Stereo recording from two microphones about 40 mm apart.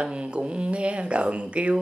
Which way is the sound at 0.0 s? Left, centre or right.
Right.